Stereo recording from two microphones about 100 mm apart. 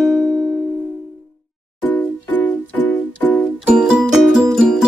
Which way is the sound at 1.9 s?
15° left (ahead or behind).